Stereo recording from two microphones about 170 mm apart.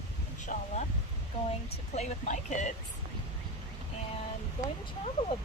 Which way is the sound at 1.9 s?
45° left (ahead or behind).